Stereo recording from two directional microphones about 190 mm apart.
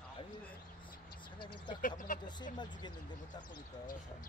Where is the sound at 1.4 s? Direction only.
25° left (ahead or behind).